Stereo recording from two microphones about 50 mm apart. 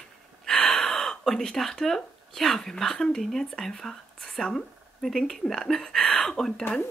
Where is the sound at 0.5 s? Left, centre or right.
Centre.